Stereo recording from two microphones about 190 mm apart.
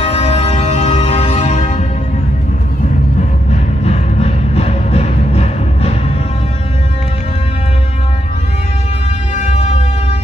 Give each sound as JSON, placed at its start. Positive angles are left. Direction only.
{"t": 0.0, "sound": "music", "side_deg": 30}
{"t": 3.8, "sound": "music", "side_deg": 35}